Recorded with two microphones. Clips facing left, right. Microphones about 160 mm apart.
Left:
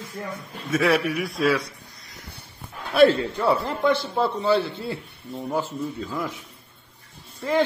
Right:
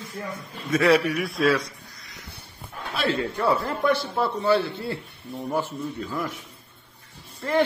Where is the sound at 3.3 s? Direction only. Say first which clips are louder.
Left 1 dB; 20° left (ahead or behind).